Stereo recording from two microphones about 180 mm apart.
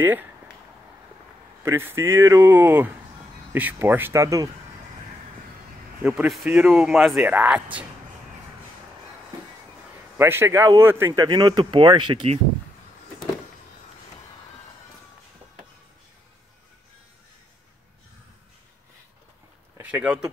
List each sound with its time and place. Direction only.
1.6 s speech: 15° right (ahead or behind)
6.0 s speech: 5° right (ahead or behind)
10.1 s speech: 15° right (ahead or behind)
19.8 s speech: 5° right (ahead or behind)